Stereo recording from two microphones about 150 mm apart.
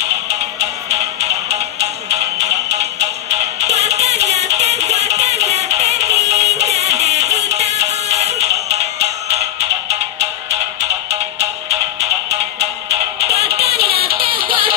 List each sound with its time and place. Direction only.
1.5 s music: 45° right (ahead or behind)
10.5 s music: 45° right (ahead or behind)
13.7 s music: 90° right